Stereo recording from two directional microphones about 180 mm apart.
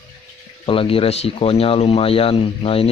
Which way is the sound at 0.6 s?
30° left (ahead or behind).